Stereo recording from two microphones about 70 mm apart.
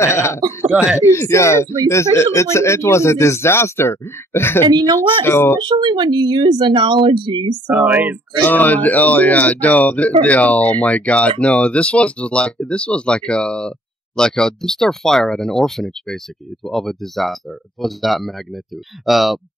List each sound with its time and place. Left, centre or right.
0.0 s speech: left
4.6 s speech: right
5.2 s speech: left
5.6 s speech: right
7.6 s speech: right
8.5 s speech: left; by 19.4 s centre